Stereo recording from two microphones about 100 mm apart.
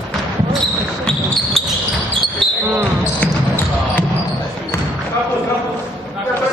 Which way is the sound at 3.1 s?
20° left (ahead or behind).